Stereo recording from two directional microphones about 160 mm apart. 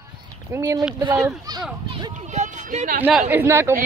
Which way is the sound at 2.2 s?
50° right (ahead or behind).